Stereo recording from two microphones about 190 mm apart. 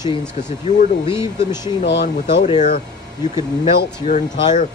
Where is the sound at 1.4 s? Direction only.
20° left (ahead or behind).